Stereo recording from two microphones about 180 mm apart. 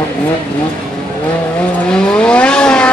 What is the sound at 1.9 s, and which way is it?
Vehicle, 5° left (ahead or behind).